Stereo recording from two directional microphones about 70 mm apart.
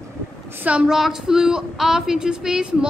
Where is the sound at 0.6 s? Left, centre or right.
Centre.